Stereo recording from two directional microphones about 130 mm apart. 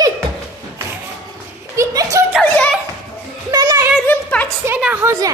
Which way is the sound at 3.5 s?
25° right (ahead or behind).